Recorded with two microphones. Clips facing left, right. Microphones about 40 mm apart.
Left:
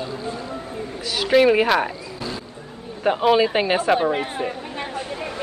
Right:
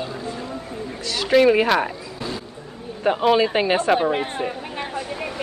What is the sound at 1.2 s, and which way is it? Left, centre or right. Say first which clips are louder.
Speech: even; centre.